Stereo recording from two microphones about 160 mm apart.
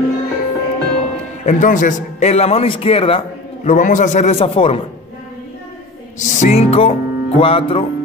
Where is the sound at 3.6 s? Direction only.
50° left (ahead or behind); by 4.8 s 35° left (ahead or behind).